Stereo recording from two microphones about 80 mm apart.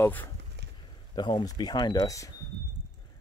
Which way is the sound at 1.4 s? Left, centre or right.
Left.